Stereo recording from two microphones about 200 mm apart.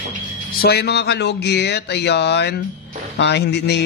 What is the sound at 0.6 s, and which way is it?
A man's voice, 55° left (ahead or behind).